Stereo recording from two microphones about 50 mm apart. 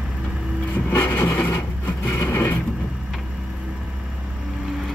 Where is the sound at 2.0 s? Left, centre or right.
Left.